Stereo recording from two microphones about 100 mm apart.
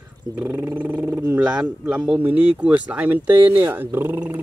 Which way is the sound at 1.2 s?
10° right (ahead or behind).